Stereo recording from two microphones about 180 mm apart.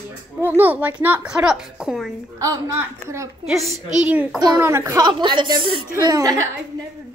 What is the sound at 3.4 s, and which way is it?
A woman's voice, centre (ahead or behind).